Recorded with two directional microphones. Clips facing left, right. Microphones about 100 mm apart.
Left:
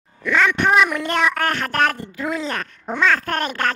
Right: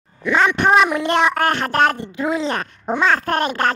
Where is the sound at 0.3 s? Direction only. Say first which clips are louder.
Right 2 dB; 20° right (ahead or behind).